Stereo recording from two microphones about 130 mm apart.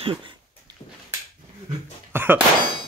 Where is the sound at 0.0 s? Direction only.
45° right (ahead or behind).